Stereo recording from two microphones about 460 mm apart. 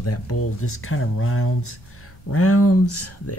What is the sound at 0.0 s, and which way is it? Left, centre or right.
Speech, left.